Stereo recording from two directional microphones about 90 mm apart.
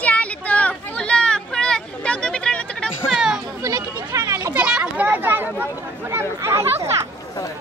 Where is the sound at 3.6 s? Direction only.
35° right (ahead or behind).